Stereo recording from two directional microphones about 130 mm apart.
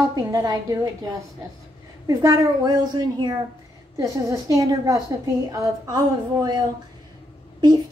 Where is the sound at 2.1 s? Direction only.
30° right (ahead or behind).